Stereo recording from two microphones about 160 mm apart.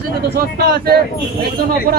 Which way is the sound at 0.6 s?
85° right.